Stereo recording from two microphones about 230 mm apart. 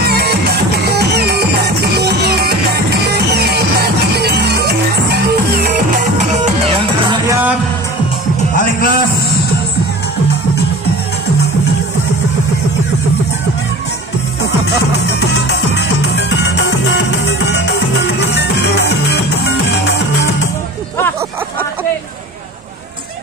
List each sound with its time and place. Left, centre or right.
0.0 s music: right
6.4 s music: right
8.5 s a sound: left
16.9 s music: left